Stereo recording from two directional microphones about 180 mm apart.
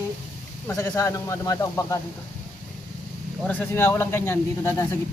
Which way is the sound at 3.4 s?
10° left (ahead or behind).